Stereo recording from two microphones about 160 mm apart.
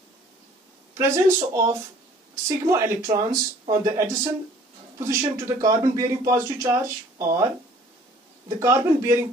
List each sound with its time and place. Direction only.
0.9 s speech: 20° right (ahead or behind)
8.5 s speech: 20° right (ahead or behind)